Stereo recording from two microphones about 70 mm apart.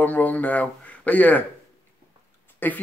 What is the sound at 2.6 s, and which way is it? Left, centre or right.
Speech, left.